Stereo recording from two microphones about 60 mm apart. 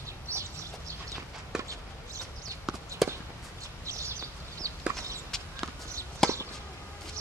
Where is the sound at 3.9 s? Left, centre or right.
Right.